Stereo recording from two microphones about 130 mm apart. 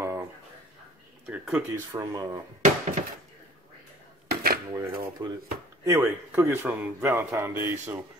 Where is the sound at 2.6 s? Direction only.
70° right (ahead or behind).